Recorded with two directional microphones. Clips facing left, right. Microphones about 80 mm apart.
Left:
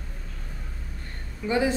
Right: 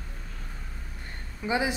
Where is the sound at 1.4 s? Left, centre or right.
Centre.